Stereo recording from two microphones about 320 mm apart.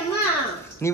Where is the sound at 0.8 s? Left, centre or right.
Centre.